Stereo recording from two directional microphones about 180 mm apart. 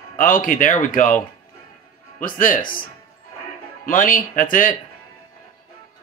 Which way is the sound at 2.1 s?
50° left (ahead or behind).